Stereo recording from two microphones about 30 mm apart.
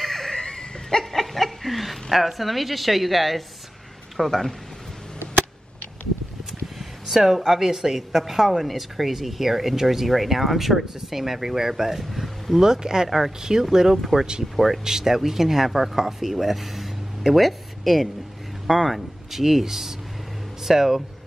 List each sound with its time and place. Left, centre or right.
0.0 s dog: centre
0.3 s a sound: left; by 3.4 s centre
4.2 s speech: centre
7.1 s speech: centre
12.5 s speech: centre
14.4 s speech: centre
14.9 s speech: centre